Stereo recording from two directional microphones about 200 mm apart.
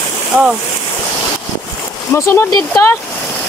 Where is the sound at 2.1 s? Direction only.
15° left (ahead or behind).